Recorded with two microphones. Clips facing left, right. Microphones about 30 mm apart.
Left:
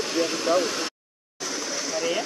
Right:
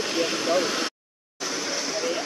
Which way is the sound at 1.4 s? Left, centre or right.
Right.